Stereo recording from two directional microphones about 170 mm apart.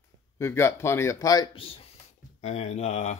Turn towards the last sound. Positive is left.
turn(degrees=40)  # may be behind; listen again after turning